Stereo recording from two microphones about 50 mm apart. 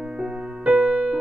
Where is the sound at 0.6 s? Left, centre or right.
Right.